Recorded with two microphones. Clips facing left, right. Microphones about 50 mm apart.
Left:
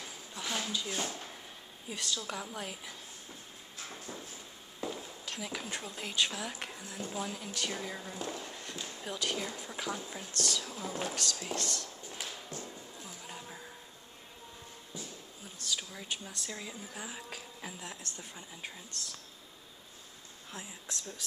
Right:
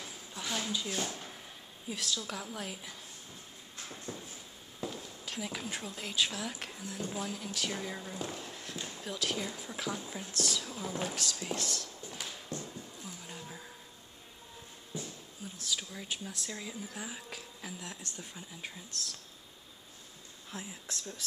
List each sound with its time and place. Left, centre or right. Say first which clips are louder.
0.3 s a sound: even; centre
1.9 s speech: even; centre
4.7 s a sound: left 1 dB; centre
5.2 s speech: right 2 dB; centre
11.5 s a sound: left 1 dB; centre
12.4 s music: right 2 dB; left
13.3 s music: even; centre
15.6 s speech: even; centre
20.5 s speech: right 1 dB; centre